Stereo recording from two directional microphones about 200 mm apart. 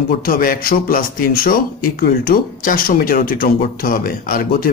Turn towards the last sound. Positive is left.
turn(degrees=45)  # may be behind; listen again after turning